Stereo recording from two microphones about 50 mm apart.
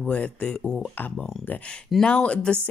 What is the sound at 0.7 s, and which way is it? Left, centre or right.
Speech, centre.